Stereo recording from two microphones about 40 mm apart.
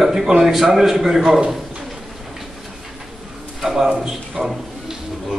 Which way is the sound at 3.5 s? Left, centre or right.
Centre.